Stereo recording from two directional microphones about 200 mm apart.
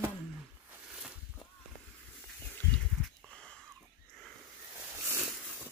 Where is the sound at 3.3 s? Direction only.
5° left (ahead or behind).